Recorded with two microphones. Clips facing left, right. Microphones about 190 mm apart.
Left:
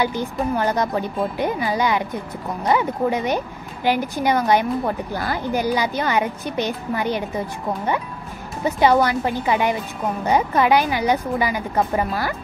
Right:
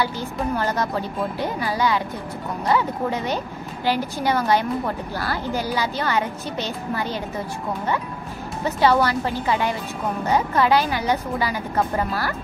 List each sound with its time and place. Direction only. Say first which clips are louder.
0.0 s a woman's voice: left 3 dB; 15° left (ahead or behind)
8.6 s a woman's voice: left 2 dB; 15° left (ahead or behind)